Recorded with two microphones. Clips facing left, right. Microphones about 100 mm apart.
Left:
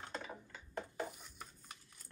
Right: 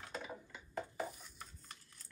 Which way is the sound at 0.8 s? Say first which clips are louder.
Right 1 dB; 5° right (ahead or behind).